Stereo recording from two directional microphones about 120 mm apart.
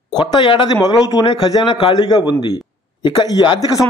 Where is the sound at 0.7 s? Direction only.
30° left (ahead or behind).